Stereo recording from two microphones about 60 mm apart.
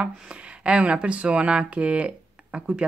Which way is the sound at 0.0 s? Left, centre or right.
Right.